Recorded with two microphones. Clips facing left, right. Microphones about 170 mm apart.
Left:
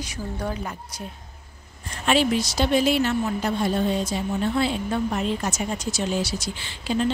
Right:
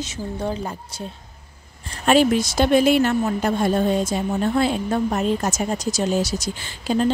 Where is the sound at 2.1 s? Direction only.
50° right (ahead or behind).